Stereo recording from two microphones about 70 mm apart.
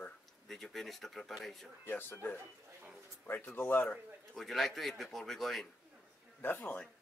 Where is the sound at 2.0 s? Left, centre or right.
Left.